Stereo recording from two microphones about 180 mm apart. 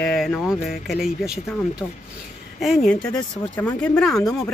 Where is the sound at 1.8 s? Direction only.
10° left (ahead or behind).